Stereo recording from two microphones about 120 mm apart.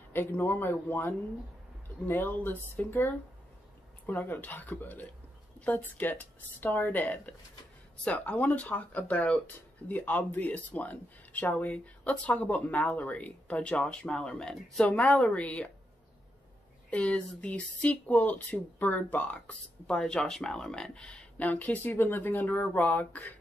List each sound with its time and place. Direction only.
0.1 s speech: 15° left (ahead or behind)
16.9 s speech: 10° left (ahead or behind)